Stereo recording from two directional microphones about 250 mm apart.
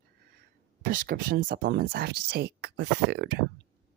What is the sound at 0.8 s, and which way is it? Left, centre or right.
Speech, right.